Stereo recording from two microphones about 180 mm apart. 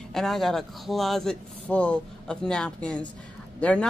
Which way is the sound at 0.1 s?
Centre (ahead or behind).